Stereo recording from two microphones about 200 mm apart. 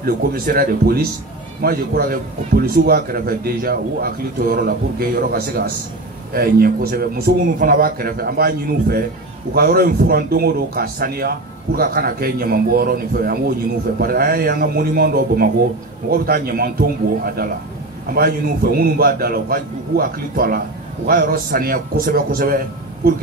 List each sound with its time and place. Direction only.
0.0 s a man's voice: 50° right (ahead or behind)